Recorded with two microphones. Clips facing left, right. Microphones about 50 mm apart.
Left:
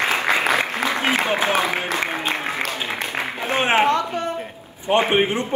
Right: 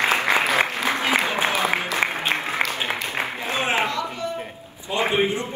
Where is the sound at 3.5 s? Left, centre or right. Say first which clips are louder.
Left 7 dB; left.